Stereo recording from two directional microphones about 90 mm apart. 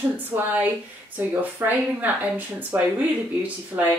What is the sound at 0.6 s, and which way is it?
A woman's voice, 20° right (ahead or behind).